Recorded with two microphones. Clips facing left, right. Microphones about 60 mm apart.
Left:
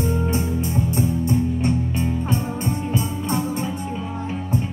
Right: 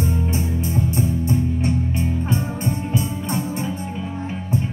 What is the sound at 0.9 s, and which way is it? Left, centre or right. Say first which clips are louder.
Music: even; left.